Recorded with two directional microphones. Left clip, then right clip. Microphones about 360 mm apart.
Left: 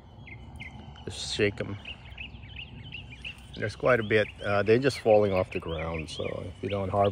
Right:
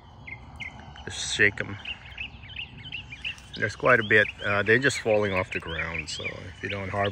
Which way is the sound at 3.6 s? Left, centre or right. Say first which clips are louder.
Right 4 dB; centre.